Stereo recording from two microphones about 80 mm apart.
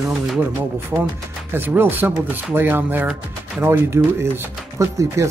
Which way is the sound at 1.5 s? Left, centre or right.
Right.